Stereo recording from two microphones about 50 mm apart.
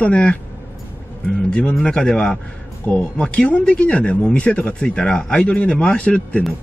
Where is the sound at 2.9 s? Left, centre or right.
Left.